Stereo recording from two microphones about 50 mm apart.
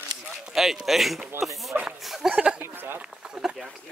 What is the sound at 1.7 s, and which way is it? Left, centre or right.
Speech, right.